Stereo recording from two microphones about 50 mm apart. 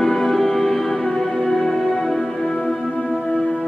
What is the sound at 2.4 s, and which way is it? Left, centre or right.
Music, left.